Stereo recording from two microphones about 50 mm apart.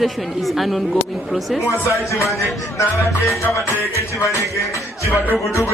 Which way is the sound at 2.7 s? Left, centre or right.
Left.